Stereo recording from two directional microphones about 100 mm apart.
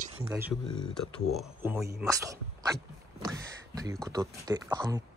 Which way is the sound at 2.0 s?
35° right (ahead or behind).